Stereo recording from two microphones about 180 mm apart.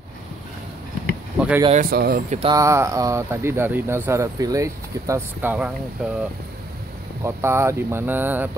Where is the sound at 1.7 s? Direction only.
50° right (ahead or behind).